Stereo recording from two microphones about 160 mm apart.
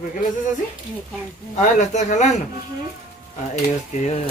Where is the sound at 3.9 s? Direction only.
45° left (ahead or behind).